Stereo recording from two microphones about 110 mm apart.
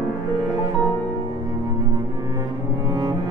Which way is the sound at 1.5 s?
40° right (ahead or behind).